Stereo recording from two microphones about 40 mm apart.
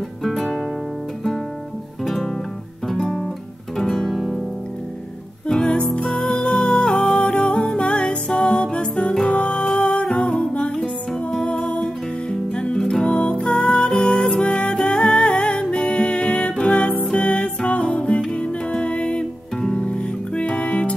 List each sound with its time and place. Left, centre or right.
0.2 s music: centre
2.0 s music: centre
3.7 s guitar: centre
5.6 s music: left